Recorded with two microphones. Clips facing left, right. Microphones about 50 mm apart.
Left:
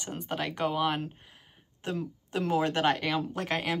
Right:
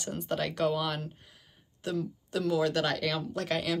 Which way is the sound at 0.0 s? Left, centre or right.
Centre.